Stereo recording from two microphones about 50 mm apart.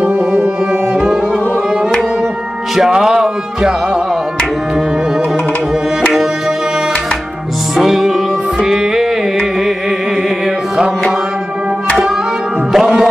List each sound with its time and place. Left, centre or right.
0.0 s tabla: right
2.9 s music: centre
7.7 s music: centre
12.7 s music: centre